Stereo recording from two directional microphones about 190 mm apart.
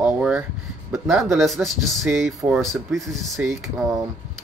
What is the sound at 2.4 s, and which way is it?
Speech, 15° right (ahead or behind).